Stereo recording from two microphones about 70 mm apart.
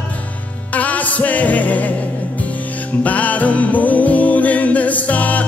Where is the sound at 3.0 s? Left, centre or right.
Left.